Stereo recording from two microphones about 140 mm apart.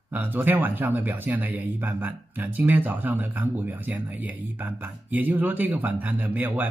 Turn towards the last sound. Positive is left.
turn(degrees=-10)  # may be behind; listen again after turning